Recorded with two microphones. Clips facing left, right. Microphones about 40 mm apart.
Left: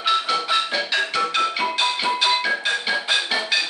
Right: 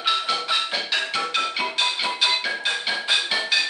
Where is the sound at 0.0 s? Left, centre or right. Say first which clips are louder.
Left 3 dB; centre.